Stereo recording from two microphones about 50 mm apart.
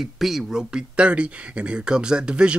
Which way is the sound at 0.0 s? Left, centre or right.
Centre.